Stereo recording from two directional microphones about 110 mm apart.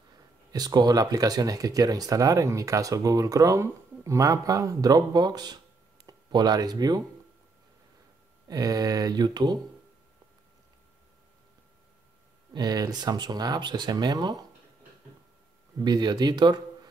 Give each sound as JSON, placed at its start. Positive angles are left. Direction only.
{"t": 0.5, "sound": "speech", "side_deg": -35}
{"t": 8.5, "sound": "speech", "side_deg": -35}
{"t": 12.5, "sound": "speech", "side_deg": -35}
{"t": 15.8, "sound": "speech", "side_deg": -40}